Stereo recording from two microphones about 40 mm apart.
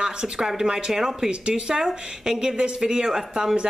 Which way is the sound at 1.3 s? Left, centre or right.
Right.